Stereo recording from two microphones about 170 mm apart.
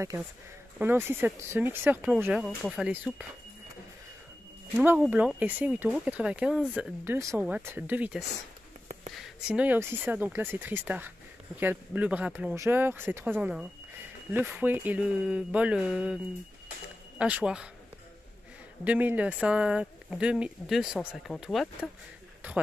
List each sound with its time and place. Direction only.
0.7 s speech: 15° right (ahead or behind)
4.7 s speech: 10° right (ahead or behind)
7.2 s speech: 20° right (ahead or behind)
17.2 s speech: 5° right (ahead or behind)
18.9 s speech: 10° right (ahead or behind)